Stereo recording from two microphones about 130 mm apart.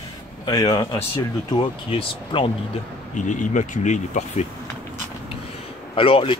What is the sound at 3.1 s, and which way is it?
Speech, 70° left (ahead or behind).